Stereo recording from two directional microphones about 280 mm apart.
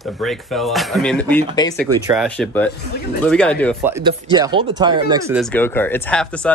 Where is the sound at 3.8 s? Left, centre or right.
Centre.